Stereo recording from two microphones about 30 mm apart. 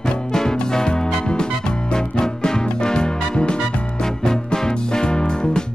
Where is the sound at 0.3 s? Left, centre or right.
Centre.